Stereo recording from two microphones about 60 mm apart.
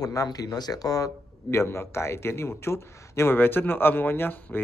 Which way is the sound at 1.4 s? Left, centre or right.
Left.